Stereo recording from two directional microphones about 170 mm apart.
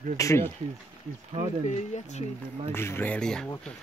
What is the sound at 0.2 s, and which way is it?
Speech, 15° left (ahead or behind).